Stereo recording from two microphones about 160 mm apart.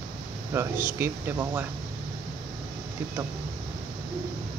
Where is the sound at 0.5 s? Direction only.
15° right (ahead or behind).